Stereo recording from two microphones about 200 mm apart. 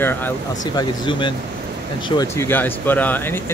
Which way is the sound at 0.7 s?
25° left (ahead or behind).